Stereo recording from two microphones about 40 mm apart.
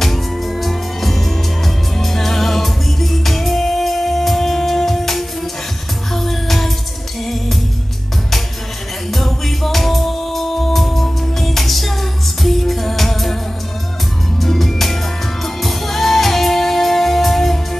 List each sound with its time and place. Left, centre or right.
0.0 s music: centre
9.1 s music: centre
14.4 s music: centre